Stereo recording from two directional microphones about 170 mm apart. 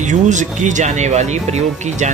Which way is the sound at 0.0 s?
45° right (ahead or behind).